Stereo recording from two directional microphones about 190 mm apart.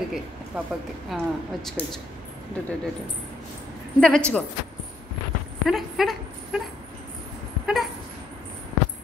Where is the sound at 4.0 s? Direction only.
5° left (ahead or behind).